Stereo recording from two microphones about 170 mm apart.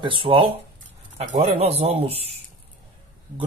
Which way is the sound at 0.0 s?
30° right (ahead or behind).